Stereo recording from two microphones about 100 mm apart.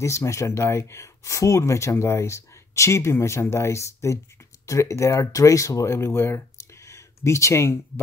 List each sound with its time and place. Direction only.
0.0 s speech: 30° left (ahead or behind)